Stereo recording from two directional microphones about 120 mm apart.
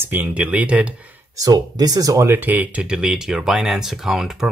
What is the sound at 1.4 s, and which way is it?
Speech, 30° right (ahead or behind).